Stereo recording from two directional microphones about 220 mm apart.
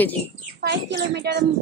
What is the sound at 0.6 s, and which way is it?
Speech, 50° right (ahead or behind).